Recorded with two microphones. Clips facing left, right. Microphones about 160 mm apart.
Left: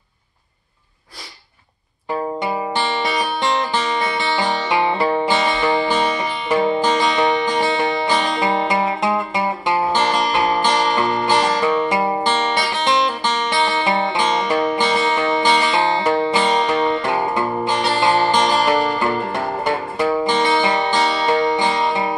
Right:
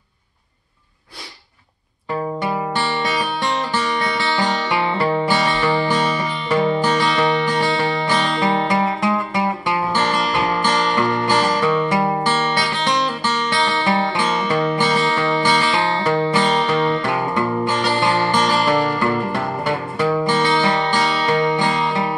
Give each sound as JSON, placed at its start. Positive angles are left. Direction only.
{"t": 2.4, "sound": "music", "side_deg": 20}